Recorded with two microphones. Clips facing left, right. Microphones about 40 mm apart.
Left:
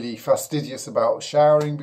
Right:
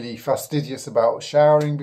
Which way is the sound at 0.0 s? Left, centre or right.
Centre.